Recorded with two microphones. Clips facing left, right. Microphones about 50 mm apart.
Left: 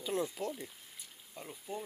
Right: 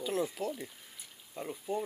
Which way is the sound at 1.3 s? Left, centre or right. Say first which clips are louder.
Right 7 dB; centre.